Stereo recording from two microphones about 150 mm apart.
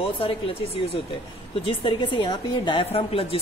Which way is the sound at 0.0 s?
40° left (ahead or behind).